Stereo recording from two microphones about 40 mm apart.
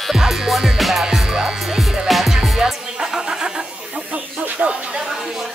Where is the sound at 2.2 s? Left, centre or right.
Centre.